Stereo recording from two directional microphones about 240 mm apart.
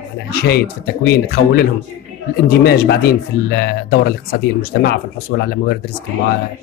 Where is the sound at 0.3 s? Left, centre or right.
Left.